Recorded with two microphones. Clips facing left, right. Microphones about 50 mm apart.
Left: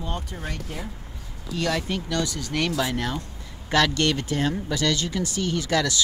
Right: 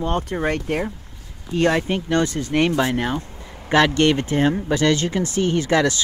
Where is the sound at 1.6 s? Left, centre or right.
Right.